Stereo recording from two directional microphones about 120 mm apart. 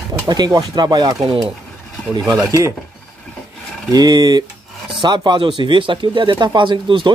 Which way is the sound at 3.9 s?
30° right (ahead or behind).